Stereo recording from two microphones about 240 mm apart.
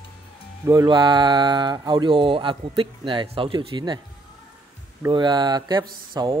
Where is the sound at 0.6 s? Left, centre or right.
Centre.